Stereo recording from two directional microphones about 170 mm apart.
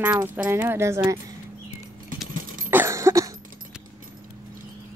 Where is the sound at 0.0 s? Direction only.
10° right (ahead or behind).